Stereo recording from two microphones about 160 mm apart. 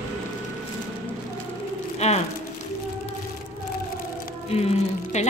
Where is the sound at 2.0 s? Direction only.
40° left (ahead or behind).